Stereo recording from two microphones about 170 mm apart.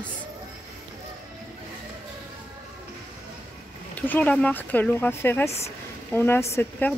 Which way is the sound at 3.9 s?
10° left (ahead or behind).